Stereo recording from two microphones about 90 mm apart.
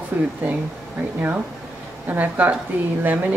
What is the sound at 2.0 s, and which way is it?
Speech, 20° right (ahead or behind).